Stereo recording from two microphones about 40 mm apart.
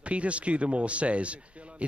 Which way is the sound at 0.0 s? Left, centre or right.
Right.